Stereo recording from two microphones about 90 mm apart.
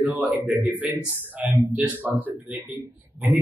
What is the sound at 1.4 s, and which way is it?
Speech, 15° right (ahead or behind).